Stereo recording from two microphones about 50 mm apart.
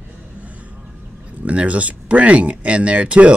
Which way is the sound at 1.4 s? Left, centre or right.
Right.